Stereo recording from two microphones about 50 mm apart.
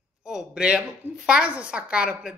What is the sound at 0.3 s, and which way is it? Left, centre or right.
Speech, centre.